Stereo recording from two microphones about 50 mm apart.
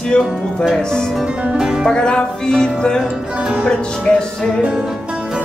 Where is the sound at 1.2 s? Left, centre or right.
Centre.